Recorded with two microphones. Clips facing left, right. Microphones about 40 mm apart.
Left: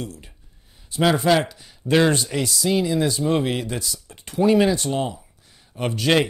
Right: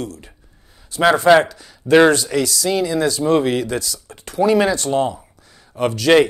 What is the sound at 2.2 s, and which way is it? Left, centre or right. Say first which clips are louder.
Speech: right 6 dB; right.